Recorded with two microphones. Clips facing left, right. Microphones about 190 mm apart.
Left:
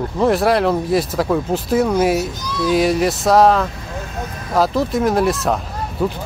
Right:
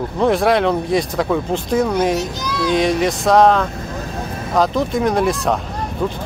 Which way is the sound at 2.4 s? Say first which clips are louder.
Right 1 dB; 80° right.